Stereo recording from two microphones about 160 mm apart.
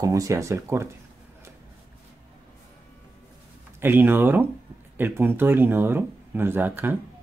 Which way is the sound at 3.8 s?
15° right (ahead or behind).